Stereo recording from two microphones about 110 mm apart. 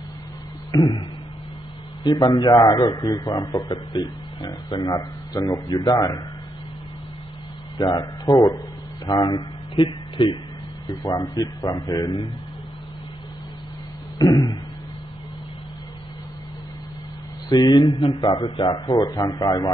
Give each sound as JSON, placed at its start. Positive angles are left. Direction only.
{"t": 2.0, "sound": "a man's voice", "side_deg": 40}
{"t": 7.7, "sound": "speech", "side_deg": 50}
{"t": 8.0, "sound": "a man's voice", "side_deg": 35}
{"t": 10.9, "sound": "a man's voice", "side_deg": 35}
{"t": 14.1, "sound": "a sound", "side_deg": 40}
{"t": 17.5, "sound": "a man's voice", "side_deg": 35}
{"t": 18.7, "sound": "a man's voice", "side_deg": 40}